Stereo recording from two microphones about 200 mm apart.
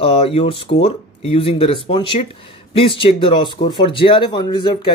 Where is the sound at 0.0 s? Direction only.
30° left (ahead or behind).